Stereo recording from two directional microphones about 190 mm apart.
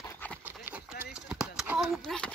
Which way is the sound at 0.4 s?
10° right (ahead or behind).